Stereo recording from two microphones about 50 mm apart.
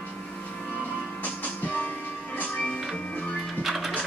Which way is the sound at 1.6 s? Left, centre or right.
Left.